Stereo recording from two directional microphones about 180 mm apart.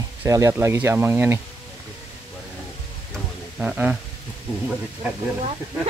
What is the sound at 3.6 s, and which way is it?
Speech, 10° right (ahead or behind).